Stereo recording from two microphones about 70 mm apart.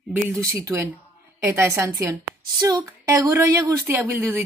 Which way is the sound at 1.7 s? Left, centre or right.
Right.